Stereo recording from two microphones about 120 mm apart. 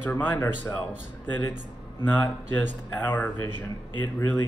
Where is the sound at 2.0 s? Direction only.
15° left (ahead or behind).